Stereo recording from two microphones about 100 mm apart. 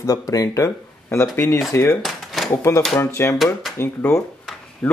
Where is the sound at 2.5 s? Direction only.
25° left (ahead or behind).